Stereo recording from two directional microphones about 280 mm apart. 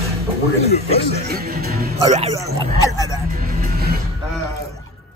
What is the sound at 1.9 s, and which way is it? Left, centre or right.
Speech, right.